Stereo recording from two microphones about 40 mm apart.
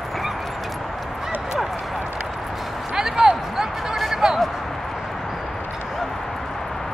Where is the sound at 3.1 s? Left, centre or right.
Centre.